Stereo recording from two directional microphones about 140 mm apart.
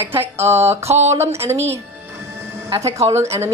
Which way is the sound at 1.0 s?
50° right (ahead or behind).